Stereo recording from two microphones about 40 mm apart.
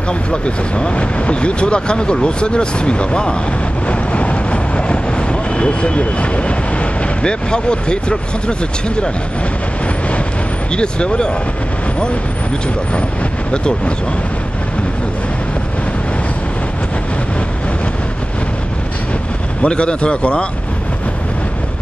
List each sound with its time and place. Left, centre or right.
0.3 s speech: left
10.8 s speech: left
13.5 s speech: left
19.6 s speech: left